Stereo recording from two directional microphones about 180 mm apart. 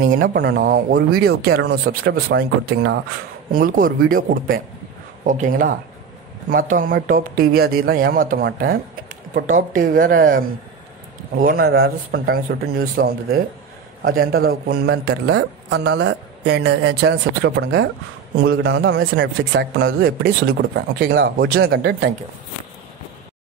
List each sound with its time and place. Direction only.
0.3 s speech: 55° right (ahead or behind); by 3.0 s 70° right (ahead or behind)
3.5 s a man's voice: 50° right (ahead or behind)